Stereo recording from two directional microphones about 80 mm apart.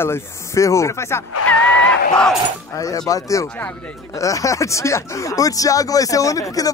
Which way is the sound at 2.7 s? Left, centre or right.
Left.